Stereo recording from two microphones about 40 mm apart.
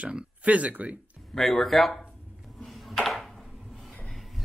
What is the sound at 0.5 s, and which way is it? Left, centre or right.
Speech, right.